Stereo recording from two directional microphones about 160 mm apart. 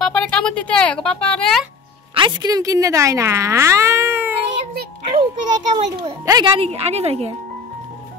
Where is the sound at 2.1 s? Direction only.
30° right (ahead or behind); by 4.3 s 15° right (ahead or behind).